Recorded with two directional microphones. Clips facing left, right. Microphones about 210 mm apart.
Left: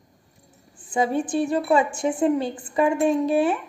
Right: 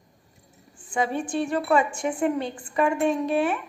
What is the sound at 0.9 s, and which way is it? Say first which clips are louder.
Speech: left 4 dB; 35° left (ahead or behind).